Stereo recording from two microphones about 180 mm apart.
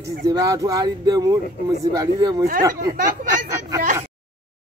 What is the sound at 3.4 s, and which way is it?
Speech, 15° right (ahead or behind).